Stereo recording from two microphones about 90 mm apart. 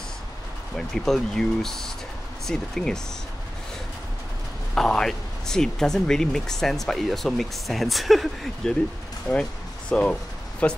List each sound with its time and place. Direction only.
0.7 s speech: 5° left (ahead or behind)
4.7 s speech: 5° left (ahead or behind)
9.3 s speech: 10° left (ahead or behind)